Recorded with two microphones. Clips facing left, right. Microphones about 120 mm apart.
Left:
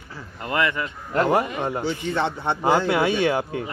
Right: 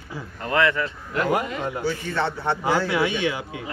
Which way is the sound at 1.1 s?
35° left (ahead or behind).